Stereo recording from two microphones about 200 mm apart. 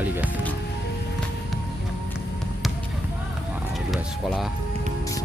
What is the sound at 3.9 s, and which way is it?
Speech, centre (ahead or behind).